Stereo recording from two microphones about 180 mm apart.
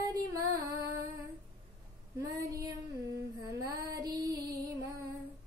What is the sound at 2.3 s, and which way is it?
Speech, 20° right (ahead or behind).